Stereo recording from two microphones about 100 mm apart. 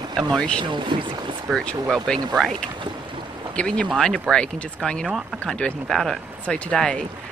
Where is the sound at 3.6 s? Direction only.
10° left (ahead or behind).